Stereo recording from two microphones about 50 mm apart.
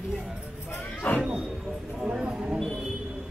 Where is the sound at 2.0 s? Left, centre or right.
Centre.